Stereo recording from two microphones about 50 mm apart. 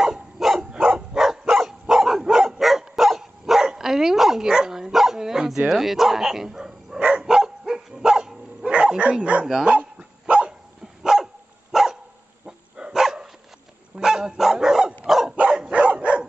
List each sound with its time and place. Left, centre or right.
0.0 s dog: centre
0.7 s dog: right
1.1 s dog: centre
5.7 s speech: centre
7.2 s dog: centre
11.0 s dog: centre